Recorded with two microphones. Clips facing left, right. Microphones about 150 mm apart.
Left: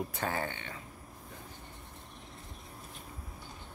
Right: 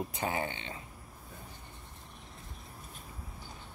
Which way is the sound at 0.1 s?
15° right (ahead or behind).